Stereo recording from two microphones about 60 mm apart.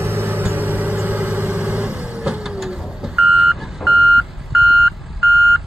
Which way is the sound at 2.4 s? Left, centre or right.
Centre.